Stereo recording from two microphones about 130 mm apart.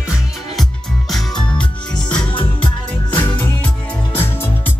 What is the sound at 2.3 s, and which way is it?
Music, 40° left (ahead or behind).